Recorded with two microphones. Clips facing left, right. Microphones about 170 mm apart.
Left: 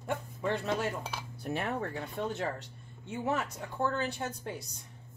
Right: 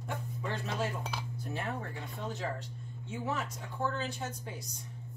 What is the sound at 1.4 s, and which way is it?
Speech, 70° left (ahead or behind).